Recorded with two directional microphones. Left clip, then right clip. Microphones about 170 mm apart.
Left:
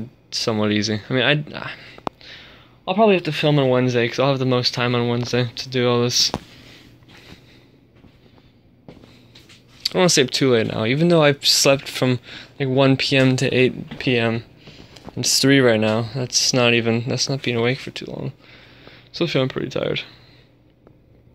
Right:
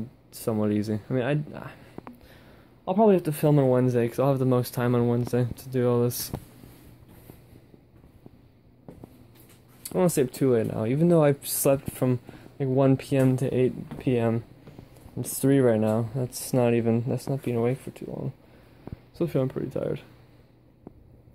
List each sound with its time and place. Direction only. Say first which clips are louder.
0.3 s speech: left 7 dB; 5° right (ahead or behind)
2.2 s speech: left 12 dB; 20° right (ahead or behind)
9.8 s speech: left 8 dB; 5° right (ahead or behind)
14.0 s speech: left 6 dB; 10° right (ahead or behind)
16.2 s speech: left 8 dB; 15° right (ahead or behind)
19.1 s speech: left 6 dB; 5° right (ahead or behind)